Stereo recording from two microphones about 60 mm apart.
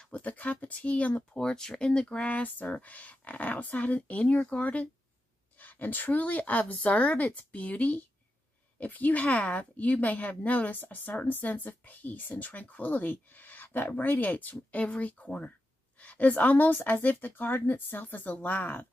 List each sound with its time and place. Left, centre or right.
0.1 s a woman's voice: left
1.3 s a woman's voice: centre; by 18.9 s left